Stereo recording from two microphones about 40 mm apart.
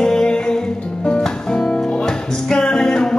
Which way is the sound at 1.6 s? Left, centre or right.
Centre.